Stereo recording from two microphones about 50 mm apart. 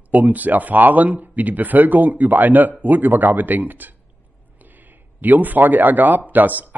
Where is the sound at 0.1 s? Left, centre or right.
Right.